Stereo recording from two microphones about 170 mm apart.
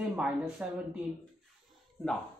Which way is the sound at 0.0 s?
5° right (ahead or behind).